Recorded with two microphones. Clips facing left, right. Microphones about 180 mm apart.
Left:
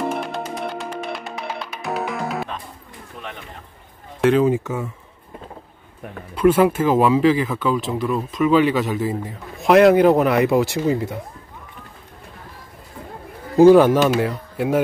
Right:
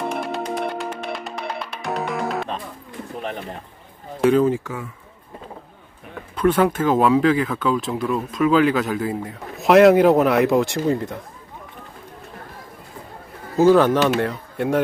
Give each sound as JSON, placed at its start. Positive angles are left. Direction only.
{"t": 0.7, "sound": "music", "side_deg": 0}
{"t": 3.2, "sound": "a sound", "side_deg": -35}
{"t": 4.2, "sound": "speech", "side_deg": 0}
{"t": 4.5, "sound": "speech", "side_deg": 20}
{"t": 6.3, "sound": "speech", "side_deg": 5}
{"t": 13.6, "sound": "speech", "side_deg": 10}